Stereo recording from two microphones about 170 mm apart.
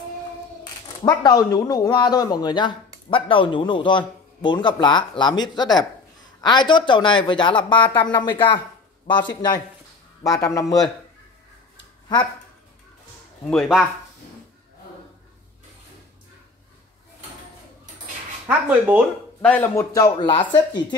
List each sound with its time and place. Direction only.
1.0 s speech: 20° left (ahead or behind)
13.5 s speech: centre (ahead or behind)
18.7 s speech: 10° right (ahead or behind)
19.4 s speech: 10° left (ahead or behind); by 20.8 s 30° left (ahead or behind)